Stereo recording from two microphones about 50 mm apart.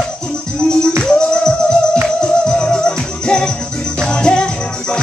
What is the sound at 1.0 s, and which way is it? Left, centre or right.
Music, centre.